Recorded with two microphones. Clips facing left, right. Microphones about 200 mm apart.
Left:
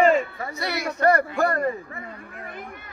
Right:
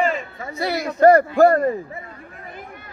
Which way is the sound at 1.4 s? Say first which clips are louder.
Right 9 dB; 35° right (ahead or behind).